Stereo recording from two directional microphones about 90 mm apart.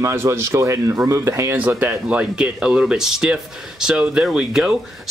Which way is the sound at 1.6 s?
15° right (ahead or behind).